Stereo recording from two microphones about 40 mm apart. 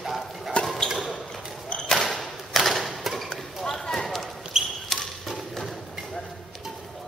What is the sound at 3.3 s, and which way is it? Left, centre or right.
Basketball bounce, centre.